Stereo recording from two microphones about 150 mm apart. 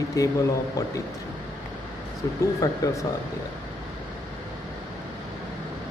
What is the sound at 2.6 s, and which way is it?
Speech, 20° left (ahead or behind).